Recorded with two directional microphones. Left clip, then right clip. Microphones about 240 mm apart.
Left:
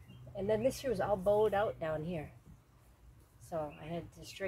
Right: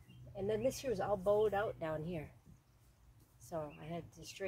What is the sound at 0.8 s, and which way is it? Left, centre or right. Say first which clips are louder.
Speech: left 3 dB; centre.